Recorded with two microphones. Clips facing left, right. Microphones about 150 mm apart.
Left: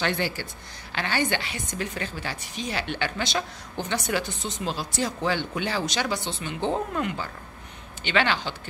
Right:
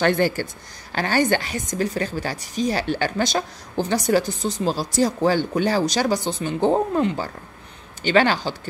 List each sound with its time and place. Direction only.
0.0 s a woman's voice: 45° right (ahead or behind)